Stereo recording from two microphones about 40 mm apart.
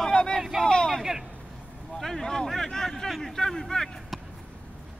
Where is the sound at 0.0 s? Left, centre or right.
Centre.